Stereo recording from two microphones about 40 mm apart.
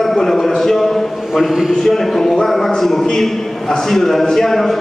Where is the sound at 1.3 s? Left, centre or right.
Centre.